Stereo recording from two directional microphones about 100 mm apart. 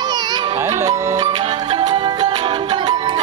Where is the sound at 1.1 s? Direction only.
55° right (ahead or behind).